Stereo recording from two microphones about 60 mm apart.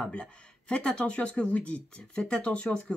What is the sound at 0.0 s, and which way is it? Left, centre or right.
Speech, centre.